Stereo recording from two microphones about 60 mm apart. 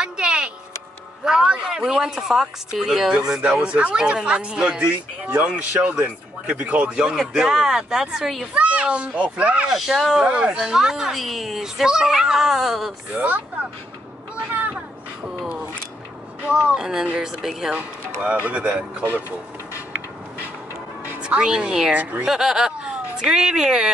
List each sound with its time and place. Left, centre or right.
0.0 s a sound: centre
1.2 s a child's voice: centre
5.3 s speech: right
7.0 s a child's voice: centre
9.7 s a child's voice: centre
13.1 s speech: right
14.5 s a sound: right
16.7 s a child's voice: centre
18.2 s speech: right
21.2 s a woman's voice: centre